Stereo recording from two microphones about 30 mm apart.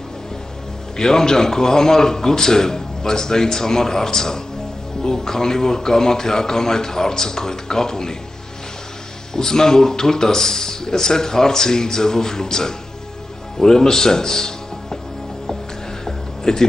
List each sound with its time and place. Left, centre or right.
0.9 s a man's voice: centre
9.3 s a man's voice: centre
16.1 s a sound: centre